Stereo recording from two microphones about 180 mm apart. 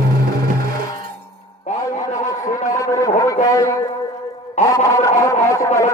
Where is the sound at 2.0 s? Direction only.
20° left (ahead or behind).